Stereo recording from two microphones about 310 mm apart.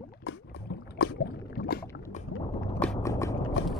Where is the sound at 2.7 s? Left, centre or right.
Centre.